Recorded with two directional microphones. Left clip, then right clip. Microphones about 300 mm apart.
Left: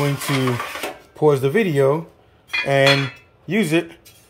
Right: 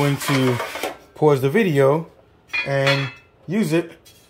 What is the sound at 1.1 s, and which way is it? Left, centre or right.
Speech, centre.